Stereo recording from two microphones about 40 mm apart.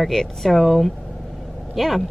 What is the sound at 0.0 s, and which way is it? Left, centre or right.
A woman's voice, centre.